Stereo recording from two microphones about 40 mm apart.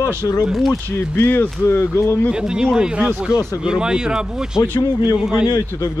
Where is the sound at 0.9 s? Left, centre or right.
Left.